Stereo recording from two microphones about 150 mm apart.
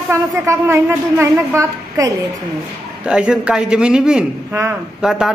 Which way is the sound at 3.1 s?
5° right (ahead or behind).